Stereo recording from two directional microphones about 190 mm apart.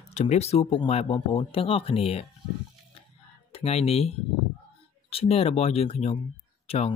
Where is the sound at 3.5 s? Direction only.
35° left (ahead or behind).